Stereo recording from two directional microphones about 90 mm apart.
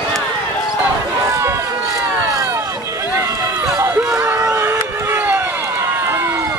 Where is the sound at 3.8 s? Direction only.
30° right (ahead or behind).